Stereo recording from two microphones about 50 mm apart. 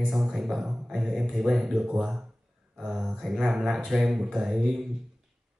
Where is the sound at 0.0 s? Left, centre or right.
Centre.